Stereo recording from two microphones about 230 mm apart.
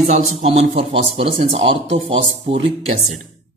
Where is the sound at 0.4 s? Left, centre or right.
Right.